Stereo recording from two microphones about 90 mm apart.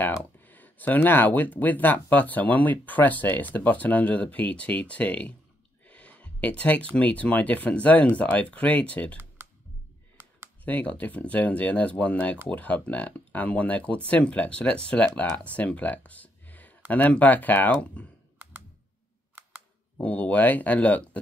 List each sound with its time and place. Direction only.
0.4 s speech: 20° left (ahead or behind)
10.6 s speech: 15° left (ahead or behind)
20.0 s speech: 15° left (ahead or behind)